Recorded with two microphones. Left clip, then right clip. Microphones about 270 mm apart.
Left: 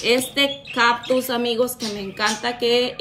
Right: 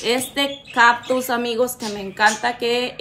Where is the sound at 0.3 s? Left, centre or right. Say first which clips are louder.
Left 2 dB; right.